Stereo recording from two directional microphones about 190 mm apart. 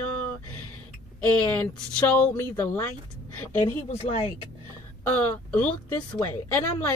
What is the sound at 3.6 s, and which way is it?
Speech, 30° left (ahead or behind).